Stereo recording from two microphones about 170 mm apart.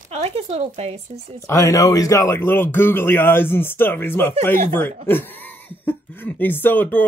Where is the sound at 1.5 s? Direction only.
20° left (ahead or behind).